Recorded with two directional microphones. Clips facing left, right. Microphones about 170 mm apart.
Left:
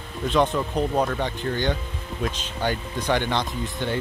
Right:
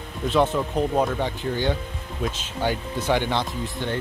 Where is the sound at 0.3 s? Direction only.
5° right (ahead or behind).